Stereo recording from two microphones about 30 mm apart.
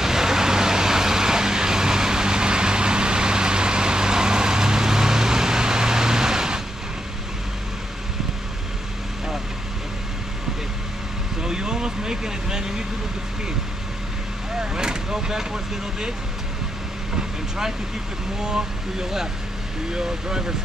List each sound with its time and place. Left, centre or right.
0.0 s vehicle: centre
11.4 s vehicle: right
14.6 s vehicle: right
17.1 s vehicle: centre
18.4 s speech: right